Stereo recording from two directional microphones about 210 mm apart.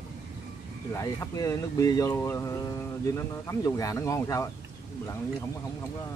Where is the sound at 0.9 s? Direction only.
15° left (ahead or behind).